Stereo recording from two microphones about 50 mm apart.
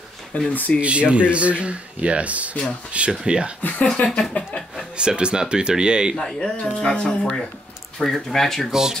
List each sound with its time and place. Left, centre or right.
0.5 s speech: left
0.7 s speech: right
3.1 s speech: centre
3.6 s speech: left
3.9 s speech: centre
4.9 s speech: centre
6.1 s speech: centre
6.5 s speech: left; by 8.6 s centre
8.6 s speech: centre